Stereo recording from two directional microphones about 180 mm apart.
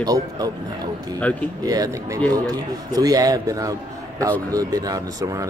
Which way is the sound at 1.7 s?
20° right (ahead or behind).